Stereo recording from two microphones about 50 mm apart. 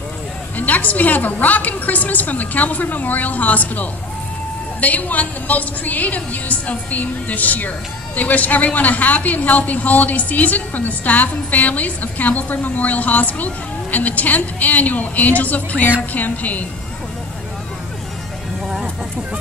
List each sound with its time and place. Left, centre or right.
0.6 s a man's voice: left